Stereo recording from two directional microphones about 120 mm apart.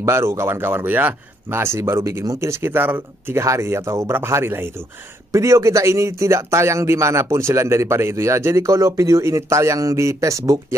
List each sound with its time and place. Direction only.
0.0 s speech: 20° right (ahead or behind)